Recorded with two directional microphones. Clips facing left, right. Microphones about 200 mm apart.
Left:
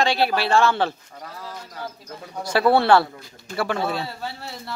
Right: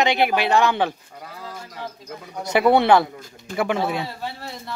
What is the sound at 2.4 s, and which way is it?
A man's voice, 20° right (ahead or behind).